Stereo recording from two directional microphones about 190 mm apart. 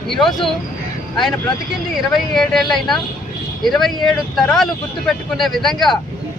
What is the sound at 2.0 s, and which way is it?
Speech, centre (ahead or behind).